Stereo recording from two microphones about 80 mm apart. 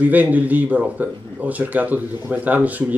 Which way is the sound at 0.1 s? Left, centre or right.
Right.